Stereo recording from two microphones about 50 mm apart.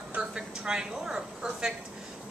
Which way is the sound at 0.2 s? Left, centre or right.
Centre.